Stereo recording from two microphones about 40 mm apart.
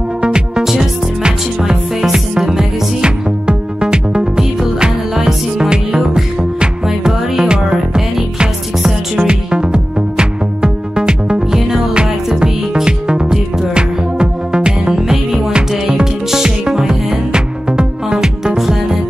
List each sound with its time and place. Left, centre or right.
0.2 s music: right